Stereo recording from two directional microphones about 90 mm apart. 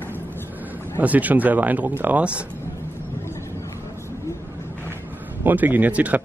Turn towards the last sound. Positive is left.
turn(degrees=-15)  # may be behind; listen again after turning